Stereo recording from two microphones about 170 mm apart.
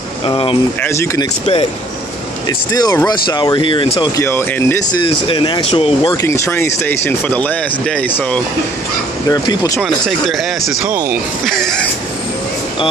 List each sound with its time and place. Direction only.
0.3 s speech: 30° left (ahead or behind)
0.8 s speech: 15° left (ahead or behind)
1.4 s speech: 35° left (ahead or behind)
2.7 s speech: 20° left (ahead or behind)
4.2 s speech: 15° left (ahead or behind)
5.0 s speech: 30° left (ahead or behind)
6.2 s speech: 15° left (ahead or behind)
9.3 s speech: 20° left (ahead or behind)
9.8 s speech: centre (ahead or behind)
10.9 s speech: 15° right (ahead or behind)
11.4 s speech: centre (ahead or behind)